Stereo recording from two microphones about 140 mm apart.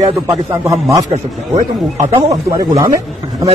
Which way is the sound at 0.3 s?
20° right (ahead or behind).